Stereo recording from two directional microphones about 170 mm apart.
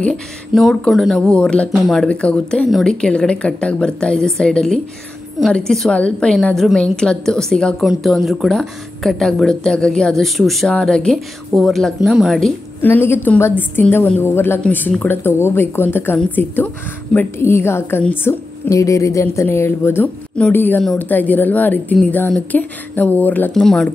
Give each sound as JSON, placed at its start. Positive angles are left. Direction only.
{"t": 0.0, "sound": "a woman's voice", "side_deg": 0}